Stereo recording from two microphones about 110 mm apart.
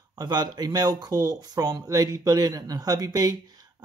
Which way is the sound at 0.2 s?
40° right (ahead or behind).